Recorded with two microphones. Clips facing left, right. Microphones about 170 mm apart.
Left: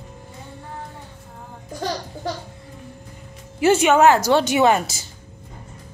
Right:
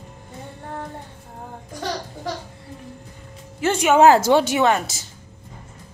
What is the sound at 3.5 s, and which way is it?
Speech, 10° left (ahead or behind).